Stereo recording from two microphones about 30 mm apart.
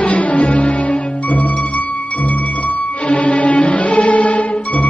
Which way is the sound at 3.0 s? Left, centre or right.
Left.